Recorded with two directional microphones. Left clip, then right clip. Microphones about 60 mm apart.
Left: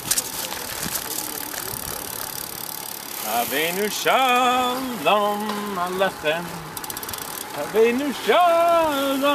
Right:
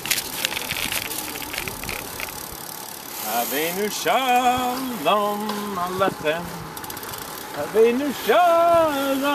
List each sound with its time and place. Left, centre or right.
3.3 s speech: left
5.9 s speech: left
7.7 s speech: left